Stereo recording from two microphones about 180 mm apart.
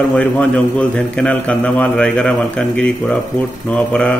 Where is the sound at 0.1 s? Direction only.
5° left (ahead or behind).